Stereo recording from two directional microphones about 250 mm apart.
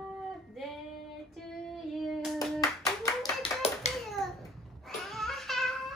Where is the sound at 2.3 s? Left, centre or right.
Centre.